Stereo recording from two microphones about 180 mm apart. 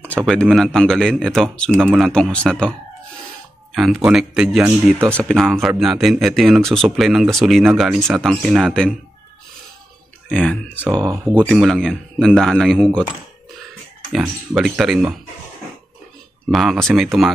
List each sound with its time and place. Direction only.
0.3 s speech: centre (ahead or behind)
3.7 s speech: centre (ahead or behind)
10.3 s speech: 5° left (ahead or behind)
14.5 s speech: centre (ahead or behind)
16.4 s speech: centre (ahead or behind)